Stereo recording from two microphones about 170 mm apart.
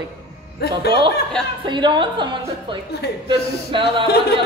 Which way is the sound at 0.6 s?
75° left (ahead or behind).